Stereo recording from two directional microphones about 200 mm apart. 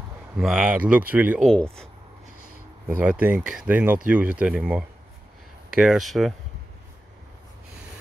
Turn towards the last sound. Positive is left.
turn(degrees=0)  # may be behind; listen again after turning